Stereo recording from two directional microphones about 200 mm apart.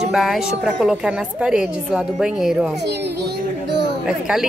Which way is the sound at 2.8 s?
55° right (ahead or behind).